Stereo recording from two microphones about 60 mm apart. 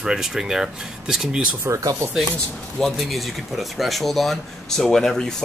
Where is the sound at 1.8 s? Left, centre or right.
Right.